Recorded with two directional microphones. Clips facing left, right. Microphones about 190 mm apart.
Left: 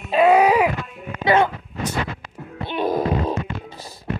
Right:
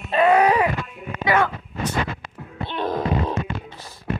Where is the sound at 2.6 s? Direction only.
10° left (ahead or behind).